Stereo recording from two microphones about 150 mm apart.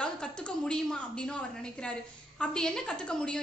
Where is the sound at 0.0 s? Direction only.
5° left (ahead or behind).